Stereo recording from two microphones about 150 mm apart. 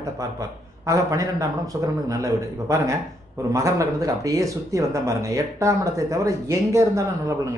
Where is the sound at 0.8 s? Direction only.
20° right (ahead or behind).